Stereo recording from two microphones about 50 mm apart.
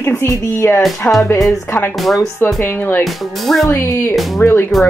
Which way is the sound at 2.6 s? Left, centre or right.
Left.